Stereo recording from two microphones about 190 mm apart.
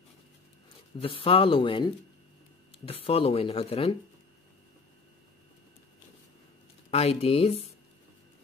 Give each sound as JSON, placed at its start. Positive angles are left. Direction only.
{"t": 0.9, "sound": "speech", "side_deg": 30}
{"t": 6.9, "sound": "speech", "side_deg": 35}